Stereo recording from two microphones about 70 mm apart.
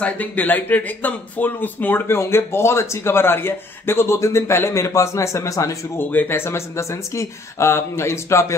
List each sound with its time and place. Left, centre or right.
0.0 s speech: left
5.9 s speech: left